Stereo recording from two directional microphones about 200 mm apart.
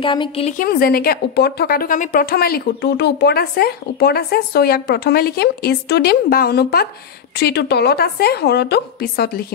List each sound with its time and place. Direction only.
0.0 s a woman's voice: 25° left (ahead or behind)
0.5 s a woman's voice: 45° left (ahead or behind)